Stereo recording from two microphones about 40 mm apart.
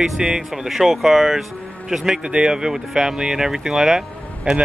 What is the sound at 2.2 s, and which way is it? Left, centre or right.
Speech, right.